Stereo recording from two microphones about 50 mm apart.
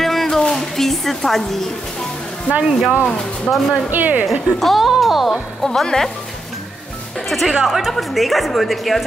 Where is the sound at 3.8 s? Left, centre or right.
Right.